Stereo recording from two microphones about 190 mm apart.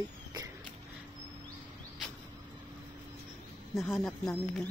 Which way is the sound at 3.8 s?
Centre (ahead or behind).